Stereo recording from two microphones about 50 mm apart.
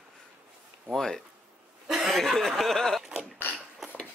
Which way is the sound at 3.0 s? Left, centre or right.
Centre.